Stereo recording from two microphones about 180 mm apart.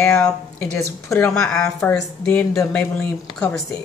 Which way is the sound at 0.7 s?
15° left (ahead or behind).